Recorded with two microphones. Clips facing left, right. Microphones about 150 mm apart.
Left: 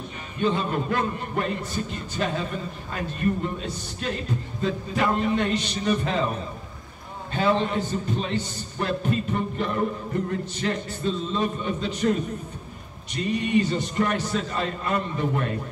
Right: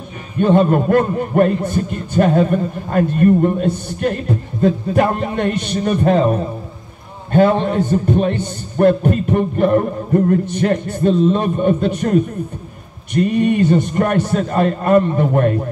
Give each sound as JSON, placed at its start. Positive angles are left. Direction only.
{"t": 0.4, "sound": "a man's voice", "side_deg": -55}
{"t": 7.3, "sound": "a man's voice", "side_deg": -50}